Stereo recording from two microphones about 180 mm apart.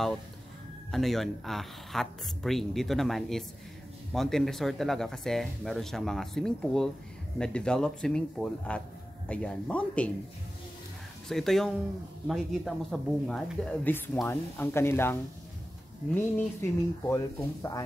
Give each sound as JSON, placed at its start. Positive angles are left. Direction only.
{"t": 0.9, "sound": "speech", "side_deg": 0}
{"t": 11.2, "sound": "speech", "side_deg": 0}
{"t": 16.3, "sound": "speech", "side_deg": 15}